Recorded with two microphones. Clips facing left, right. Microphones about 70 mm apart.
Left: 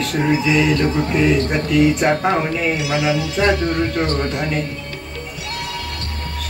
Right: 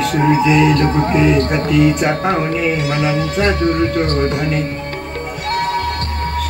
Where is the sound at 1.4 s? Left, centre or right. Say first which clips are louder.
Right 4 dB; right.